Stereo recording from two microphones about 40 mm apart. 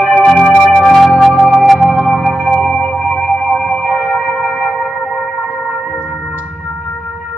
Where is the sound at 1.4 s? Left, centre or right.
Centre.